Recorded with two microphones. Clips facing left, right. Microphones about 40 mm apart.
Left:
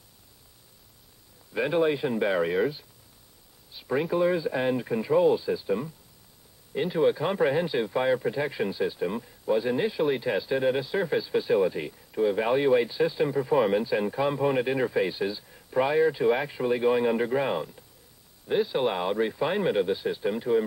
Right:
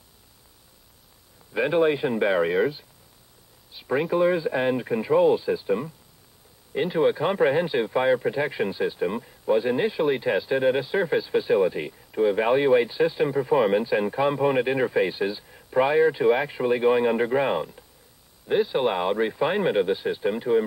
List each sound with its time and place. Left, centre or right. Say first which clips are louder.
1.5 s speech: right 3 dB; centre